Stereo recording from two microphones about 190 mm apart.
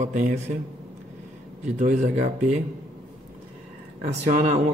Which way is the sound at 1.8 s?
40° right (ahead or behind).